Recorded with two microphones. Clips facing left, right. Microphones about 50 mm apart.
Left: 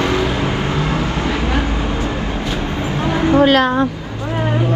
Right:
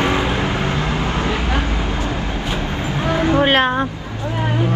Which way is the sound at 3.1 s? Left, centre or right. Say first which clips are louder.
Left 3 dB; right.